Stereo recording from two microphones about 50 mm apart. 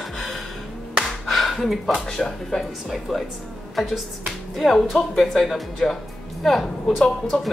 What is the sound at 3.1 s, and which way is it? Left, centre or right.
Speech, centre.